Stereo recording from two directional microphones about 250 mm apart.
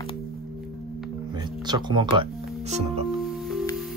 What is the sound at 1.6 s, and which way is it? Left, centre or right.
Speech, centre.